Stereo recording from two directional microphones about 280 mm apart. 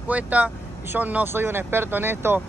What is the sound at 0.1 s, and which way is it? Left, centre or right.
Speech, centre.